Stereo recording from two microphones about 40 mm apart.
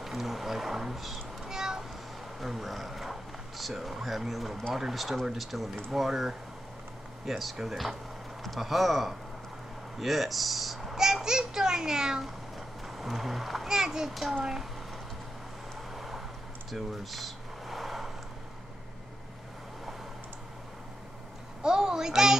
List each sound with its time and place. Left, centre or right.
0.0 s speech: centre
1.4 s cat: centre
2.4 s speech: centre
11.0 s a child's voice: centre
12.2 s cat: centre
13.7 s speech: centre
15.9 s vehicle: centre
16.7 s a sound: centre
21.6 s a sound: centre